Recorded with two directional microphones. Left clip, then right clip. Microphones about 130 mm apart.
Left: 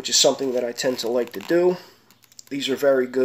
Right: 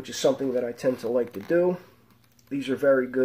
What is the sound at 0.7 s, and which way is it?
Speech, centre (ahead or behind).